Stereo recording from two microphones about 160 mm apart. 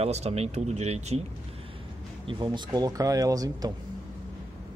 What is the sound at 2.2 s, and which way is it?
Speech, 30° right (ahead or behind).